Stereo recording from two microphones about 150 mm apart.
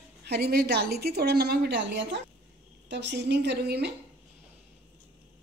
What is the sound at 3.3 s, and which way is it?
Speech, 90° right.